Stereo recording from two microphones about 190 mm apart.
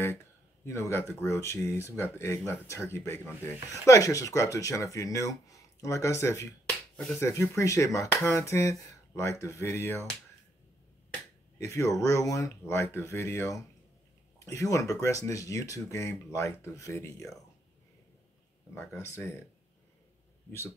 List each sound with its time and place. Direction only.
0.7 s speech: 15° left (ahead or behind)
11.6 s speech: 15° left (ahead or behind)
18.8 s speech: 15° left (ahead or behind)